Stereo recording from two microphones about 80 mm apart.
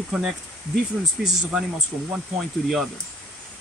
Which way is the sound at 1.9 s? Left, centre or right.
Right.